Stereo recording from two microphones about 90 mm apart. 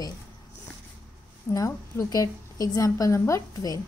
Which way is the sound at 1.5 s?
40° left (ahead or behind).